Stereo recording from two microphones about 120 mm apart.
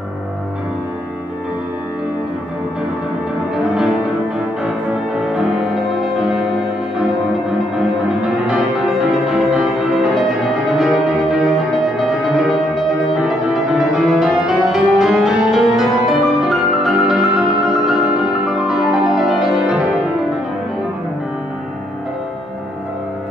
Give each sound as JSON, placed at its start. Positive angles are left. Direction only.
{"t": 5.3, "sound": "music", "side_deg": -5}
{"t": 8.5, "sound": "music", "side_deg": -5}